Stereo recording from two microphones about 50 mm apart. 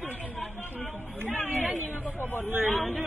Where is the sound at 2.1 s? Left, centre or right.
Left.